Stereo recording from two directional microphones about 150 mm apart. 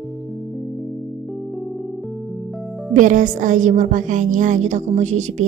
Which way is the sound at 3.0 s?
60° right (ahead or behind).